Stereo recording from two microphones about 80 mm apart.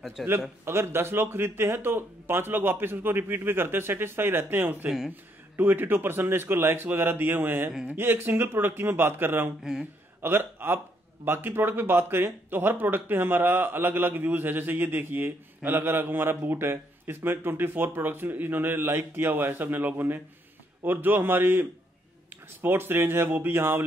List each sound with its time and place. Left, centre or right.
0.2 s speech: centre
0.7 s speech: right
4.8 s speech: centre
5.1 s speech: right
9.6 s speech: centre
10.2 s speech: right